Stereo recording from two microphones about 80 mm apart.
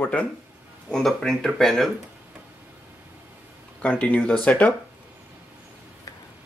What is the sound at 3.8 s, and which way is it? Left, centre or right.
Speech, centre.